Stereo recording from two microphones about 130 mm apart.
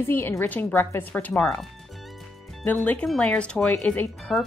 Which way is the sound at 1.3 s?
5° left (ahead or behind).